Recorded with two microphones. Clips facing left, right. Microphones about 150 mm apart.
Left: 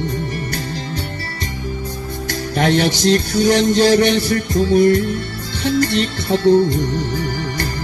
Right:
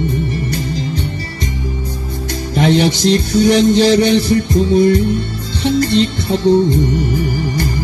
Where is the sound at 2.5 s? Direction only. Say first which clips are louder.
Right 3 dB; 20° right (ahead or behind).